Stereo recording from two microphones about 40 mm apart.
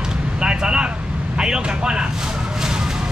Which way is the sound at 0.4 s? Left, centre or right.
Right.